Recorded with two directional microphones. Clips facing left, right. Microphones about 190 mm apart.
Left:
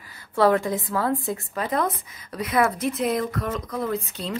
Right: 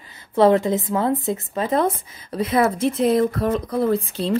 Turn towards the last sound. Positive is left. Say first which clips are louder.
# right 7 dB
turn(degrees=-30)  # may be behind; listen again after turning